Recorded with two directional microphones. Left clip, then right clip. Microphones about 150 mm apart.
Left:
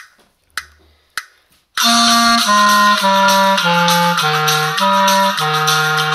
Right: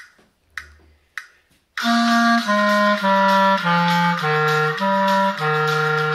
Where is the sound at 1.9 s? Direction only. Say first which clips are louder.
Left 5 dB; 40° left (ahead or behind).